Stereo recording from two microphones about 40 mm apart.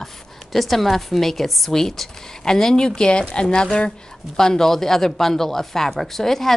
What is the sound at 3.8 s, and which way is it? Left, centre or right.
Speech, centre.